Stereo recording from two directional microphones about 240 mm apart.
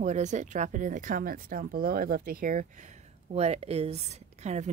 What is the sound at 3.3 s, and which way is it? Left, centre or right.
Speech, right.